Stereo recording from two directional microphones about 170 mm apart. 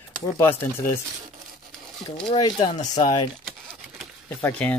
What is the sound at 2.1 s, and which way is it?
Speech, 30° left (ahead or behind).